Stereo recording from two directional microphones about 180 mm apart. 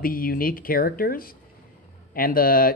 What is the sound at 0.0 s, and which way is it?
Speech, 55° left (ahead or behind).